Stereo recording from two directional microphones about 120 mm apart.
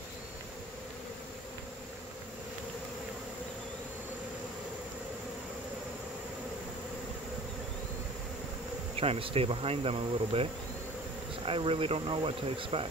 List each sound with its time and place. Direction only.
9.0 s speech: 55° right (ahead or behind)